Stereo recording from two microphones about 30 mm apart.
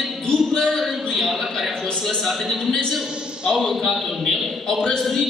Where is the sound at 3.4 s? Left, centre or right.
Right.